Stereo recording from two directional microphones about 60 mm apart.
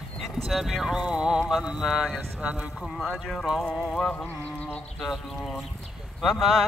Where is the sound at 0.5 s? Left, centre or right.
Centre.